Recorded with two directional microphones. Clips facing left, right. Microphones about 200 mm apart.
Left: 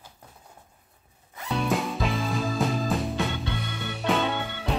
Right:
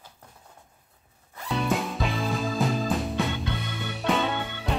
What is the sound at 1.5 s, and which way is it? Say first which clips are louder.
Music: even; centre (ahead or behind).